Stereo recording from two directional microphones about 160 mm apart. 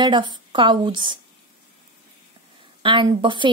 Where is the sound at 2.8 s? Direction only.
30° right (ahead or behind).